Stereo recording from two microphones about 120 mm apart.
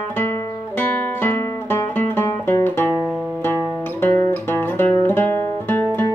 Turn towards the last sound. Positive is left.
turn(degrees=20)  # may be behind; listen again after turning